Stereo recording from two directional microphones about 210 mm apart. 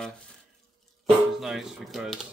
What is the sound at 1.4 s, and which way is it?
Speech, centre (ahead or behind).